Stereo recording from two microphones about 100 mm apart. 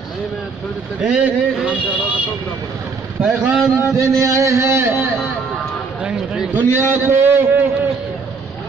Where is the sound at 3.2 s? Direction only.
5° right (ahead or behind).